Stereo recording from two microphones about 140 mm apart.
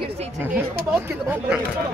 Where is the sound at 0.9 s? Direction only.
10° right (ahead or behind).